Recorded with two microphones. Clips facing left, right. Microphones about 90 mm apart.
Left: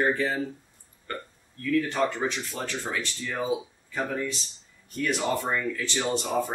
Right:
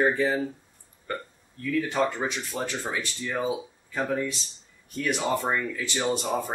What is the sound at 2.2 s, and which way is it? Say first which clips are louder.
Speech: even; 15° right (ahead or behind).